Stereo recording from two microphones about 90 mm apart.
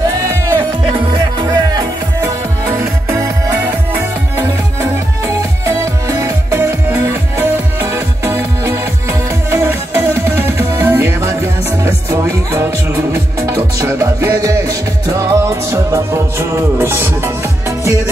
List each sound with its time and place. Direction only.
1.4 s music: 50° right (ahead or behind)
2.7 s music: 35° right (ahead or behind)
5.2 s music: 35° right (ahead or behind)